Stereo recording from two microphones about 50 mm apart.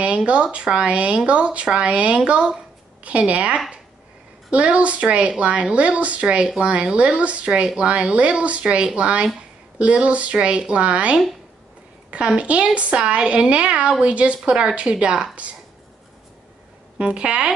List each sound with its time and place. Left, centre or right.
0.0 s a woman's voice: right
17.0 s a woman's voice: right